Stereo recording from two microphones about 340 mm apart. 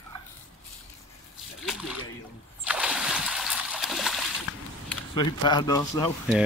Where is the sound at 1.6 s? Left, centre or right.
Centre.